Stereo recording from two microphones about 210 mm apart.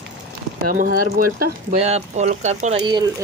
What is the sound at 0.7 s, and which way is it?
Speech, 45° right (ahead or behind).